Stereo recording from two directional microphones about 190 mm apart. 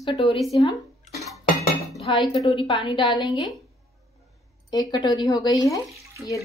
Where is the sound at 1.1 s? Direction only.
Centre (ahead or behind).